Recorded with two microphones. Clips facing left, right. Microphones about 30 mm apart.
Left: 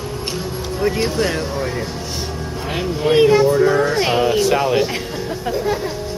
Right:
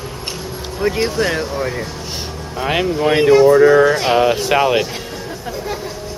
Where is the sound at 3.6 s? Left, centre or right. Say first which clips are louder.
Right 5 dB; centre.